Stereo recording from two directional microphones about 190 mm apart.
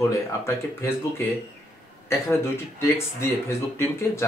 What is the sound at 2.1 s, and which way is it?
Speech, 15° left (ahead or behind).